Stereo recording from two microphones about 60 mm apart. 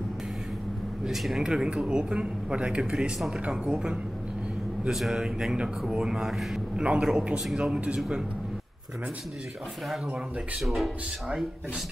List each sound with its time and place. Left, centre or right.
1.0 s speech: centre
10.6 s speech: centre